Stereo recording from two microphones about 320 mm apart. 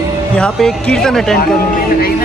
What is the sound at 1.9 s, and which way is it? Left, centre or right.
Speech, left.